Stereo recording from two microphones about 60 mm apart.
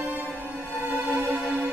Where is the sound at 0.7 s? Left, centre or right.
Right.